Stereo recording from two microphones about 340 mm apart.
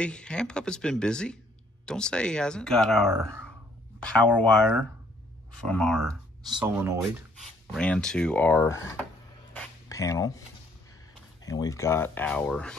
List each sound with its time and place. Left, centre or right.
0.0 s speech: centre
9.5 s a sound: centre
11.4 s speech: centre